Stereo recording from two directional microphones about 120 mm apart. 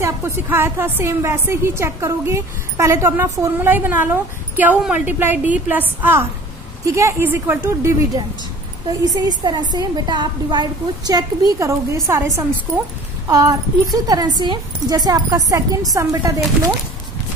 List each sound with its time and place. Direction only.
0.0 s a woman's voice: 20° right (ahead or behind)
9.0 s a woman's voice: 35° right (ahead or behind)